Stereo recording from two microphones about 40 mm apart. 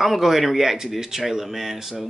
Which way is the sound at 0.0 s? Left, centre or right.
Centre.